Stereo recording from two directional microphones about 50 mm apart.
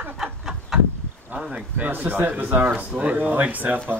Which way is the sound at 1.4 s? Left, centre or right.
Centre.